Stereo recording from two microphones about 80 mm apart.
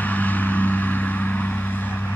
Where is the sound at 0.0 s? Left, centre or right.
Left.